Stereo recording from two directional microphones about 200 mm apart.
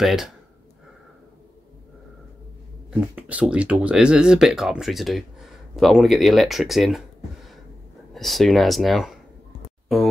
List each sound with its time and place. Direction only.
0.0 s speech: centre (ahead or behind)
2.9 s speech: 5° right (ahead or behind)
8.1 s speech: centre (ahead or behind)